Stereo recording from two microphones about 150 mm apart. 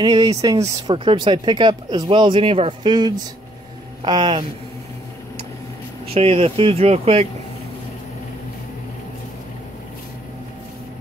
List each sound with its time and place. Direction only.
0.0 s speech: 25° right (ahead or behind)
6.1 s speech: 40° right (ahead or behind)